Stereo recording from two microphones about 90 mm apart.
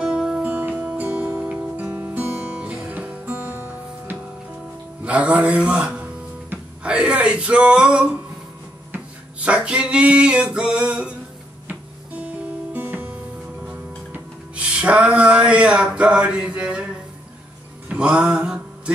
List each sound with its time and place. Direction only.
0.0 s music: 10° right (ahead or behind)
5.0 s speech: 15° right (ahead or behind)
8.9 s a sound: 15° right (ahead or behind)
12.7 s music: 20° right (ahead or behind)
17.8 s music: 10° right (ahead or behind)